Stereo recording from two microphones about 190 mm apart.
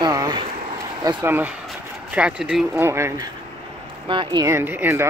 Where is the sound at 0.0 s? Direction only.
20° right (ahead or behind).